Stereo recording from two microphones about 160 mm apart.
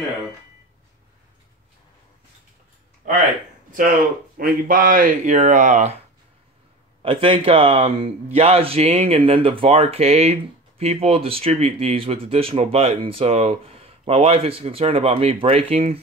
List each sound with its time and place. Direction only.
3.0 s a sound: 50° right (ahead or behind)
3.7 s speech: 60° right (ahead or behind)
7.0 s speech: 35° right (ahead or behind)